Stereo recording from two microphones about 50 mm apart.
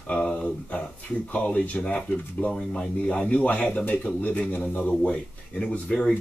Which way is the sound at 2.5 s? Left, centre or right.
Centre.